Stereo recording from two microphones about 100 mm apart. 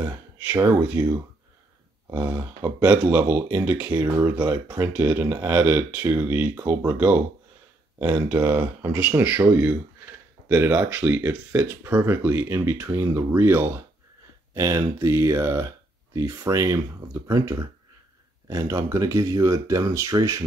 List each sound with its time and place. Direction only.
0.0 s speech: 20° right (ahead or behind)